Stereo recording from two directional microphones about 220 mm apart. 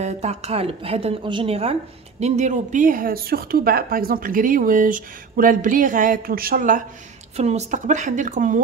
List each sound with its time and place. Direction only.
0.0 s speech: 30° right (ahead or behind)